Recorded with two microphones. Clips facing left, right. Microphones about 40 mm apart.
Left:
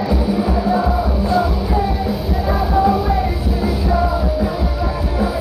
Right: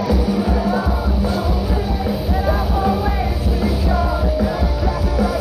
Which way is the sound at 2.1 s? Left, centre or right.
Centre.